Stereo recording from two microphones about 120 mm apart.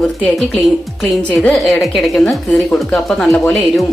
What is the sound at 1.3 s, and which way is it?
Speech, 5° left (ahead or behind).